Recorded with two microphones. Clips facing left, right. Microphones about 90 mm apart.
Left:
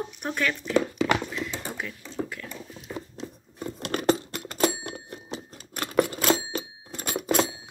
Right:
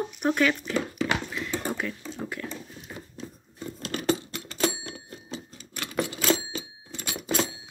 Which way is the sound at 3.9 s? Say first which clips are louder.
Left 3 dB; 45° left (ahead or behind).